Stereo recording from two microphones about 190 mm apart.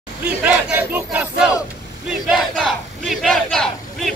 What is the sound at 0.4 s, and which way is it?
Battle cry, 5° right (ahead or behind).